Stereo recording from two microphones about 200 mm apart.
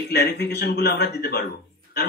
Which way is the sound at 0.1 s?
55° left (ahead or behind).